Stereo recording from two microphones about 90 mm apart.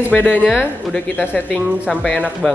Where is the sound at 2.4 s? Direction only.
5° left (ahead or behind).